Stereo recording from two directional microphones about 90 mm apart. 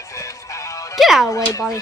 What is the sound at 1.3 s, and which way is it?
Speech, 40° left (ahead or behind).